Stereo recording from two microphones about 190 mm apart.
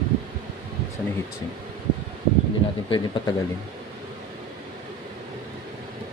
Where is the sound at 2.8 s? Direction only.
25° left (ahead or behind).